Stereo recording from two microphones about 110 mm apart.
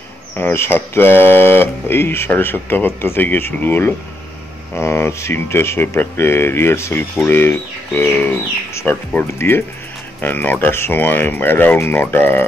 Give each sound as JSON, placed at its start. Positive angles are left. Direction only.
{"t": 0.4, "sound": "speech", "side_deg": 20}